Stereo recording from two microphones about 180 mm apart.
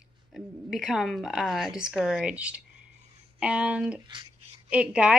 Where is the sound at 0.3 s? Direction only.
Centre (ahead or behind).